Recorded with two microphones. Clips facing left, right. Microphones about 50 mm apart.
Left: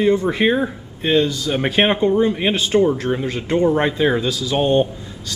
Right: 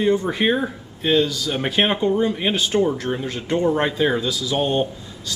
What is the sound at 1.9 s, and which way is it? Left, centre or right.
Speech, centre.